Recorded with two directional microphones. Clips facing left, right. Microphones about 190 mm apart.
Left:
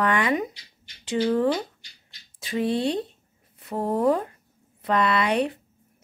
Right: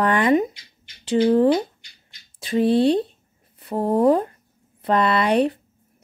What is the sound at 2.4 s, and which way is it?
A woman's voice, 30° right (ahead or behind).